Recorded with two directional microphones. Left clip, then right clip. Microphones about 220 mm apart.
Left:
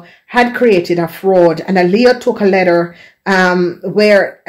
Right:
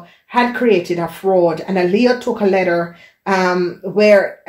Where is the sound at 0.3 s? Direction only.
45° left (ahead or behind).